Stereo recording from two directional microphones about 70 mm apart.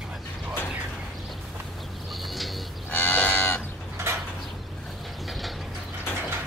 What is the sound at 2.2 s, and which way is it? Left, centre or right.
Bird, centre.